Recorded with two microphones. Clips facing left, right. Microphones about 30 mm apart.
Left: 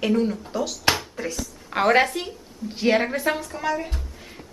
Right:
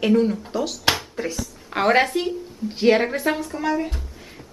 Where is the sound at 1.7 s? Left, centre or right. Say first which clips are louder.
Even; centre.